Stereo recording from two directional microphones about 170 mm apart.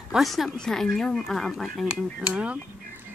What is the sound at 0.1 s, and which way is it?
Speech, centre (ahead or behind).